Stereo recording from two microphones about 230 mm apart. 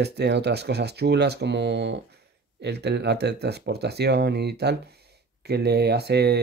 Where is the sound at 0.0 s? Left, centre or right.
Right.